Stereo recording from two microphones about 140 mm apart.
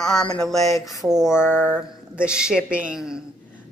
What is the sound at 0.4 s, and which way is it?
A woman's voice, centre (ahead or behind).